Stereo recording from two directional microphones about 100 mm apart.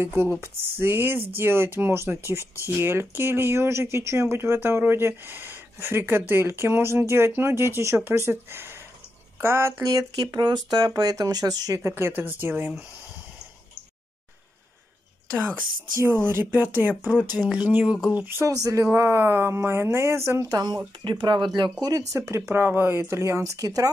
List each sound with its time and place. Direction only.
0.0 s speech: 20° right (ahead or behind)
11.9 s speech: 20° right (ahead or behind)
16.3 s speech: 20° right (ahead or behind)
18.5 s speech: 35° right (ahead or behind)